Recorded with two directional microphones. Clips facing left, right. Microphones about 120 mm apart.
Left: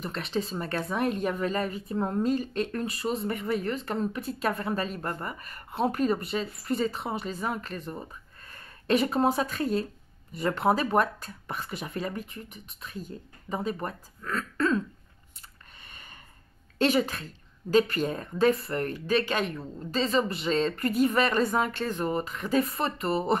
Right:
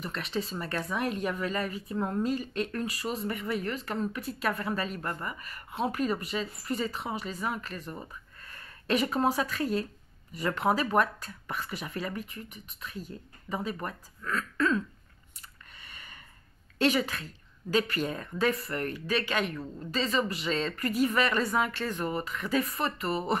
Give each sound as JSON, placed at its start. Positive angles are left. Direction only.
{"t": 0.0, "sound": "speech", "side_deg": 30}
{"t": 15.8, "sound": "a sound", "side_deg": 35}
{"t": 16.7, "sound": "speech", "side_deg": 40}